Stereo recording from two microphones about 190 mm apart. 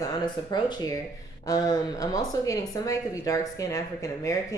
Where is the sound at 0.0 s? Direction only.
25° left (ahead or behind).